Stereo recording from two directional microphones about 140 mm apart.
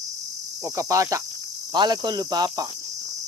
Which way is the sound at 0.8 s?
20° right (ahead or behind).